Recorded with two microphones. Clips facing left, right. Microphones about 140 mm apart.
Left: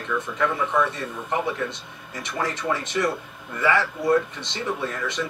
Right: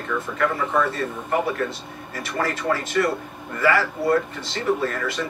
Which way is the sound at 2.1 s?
20° left (ahead or behind).